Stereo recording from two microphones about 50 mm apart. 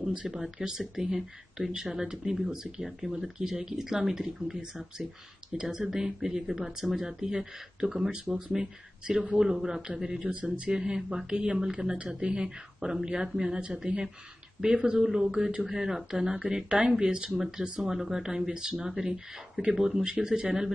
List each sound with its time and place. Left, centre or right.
0.3 s speech: centre
10.2 s speech: right